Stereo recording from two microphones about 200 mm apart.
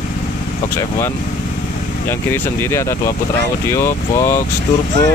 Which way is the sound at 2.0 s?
10° left (ahead or behind).